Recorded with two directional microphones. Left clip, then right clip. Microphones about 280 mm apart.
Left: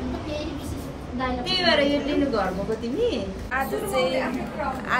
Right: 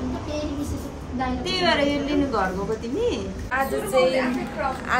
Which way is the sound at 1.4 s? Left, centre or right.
Right.